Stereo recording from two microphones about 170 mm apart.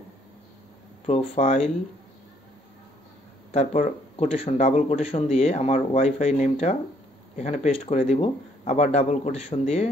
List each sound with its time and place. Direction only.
1.0 s speech: 40° left (ahead or behind)
3.5 s speech: 40° left (ahead or behind)